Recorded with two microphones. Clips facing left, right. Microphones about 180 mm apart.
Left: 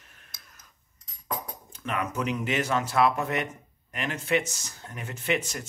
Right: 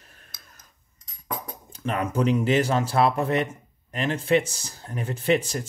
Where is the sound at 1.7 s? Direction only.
35° right (ahead or behind).